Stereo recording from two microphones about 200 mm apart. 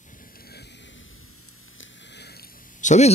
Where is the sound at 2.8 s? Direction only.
35° left (ahead or behind).